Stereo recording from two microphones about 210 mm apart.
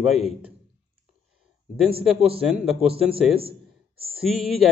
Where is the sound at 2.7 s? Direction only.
25° right (ahead or behind).